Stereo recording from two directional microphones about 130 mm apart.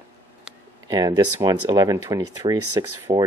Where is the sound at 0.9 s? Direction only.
30° right (ahead or behind).